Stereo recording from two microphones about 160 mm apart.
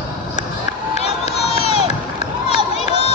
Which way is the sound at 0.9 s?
40° left (ahead or behind).